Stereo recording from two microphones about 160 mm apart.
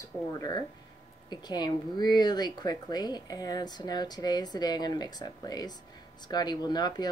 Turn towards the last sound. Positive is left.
turn(degrees=25)  # may be behind; listen again after turning